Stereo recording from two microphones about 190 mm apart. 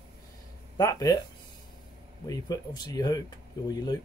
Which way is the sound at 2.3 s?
20° left (ahead or behind).